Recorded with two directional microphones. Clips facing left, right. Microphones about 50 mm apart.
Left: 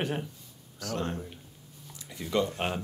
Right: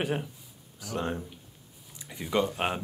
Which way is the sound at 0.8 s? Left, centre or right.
Centre.